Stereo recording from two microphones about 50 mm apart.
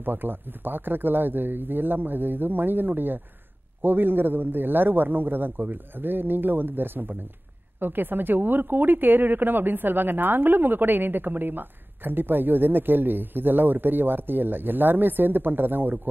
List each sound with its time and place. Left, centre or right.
0.0 s a woman's voice: right